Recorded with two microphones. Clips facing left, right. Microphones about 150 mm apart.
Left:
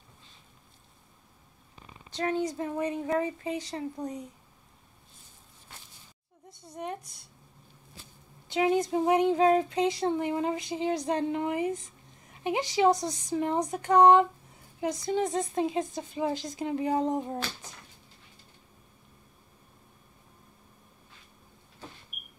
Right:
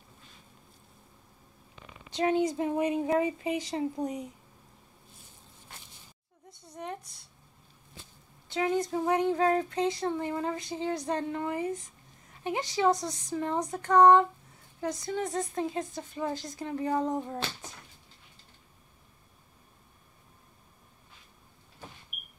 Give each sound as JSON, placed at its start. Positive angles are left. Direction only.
{"t": 2.0, "sound": "speech", "side_deg": -15}
{"t": 6.7, "sound": "speech", "side_deg": 15}
{"t": 8.5, "sound": "speech", "side_deg": 15}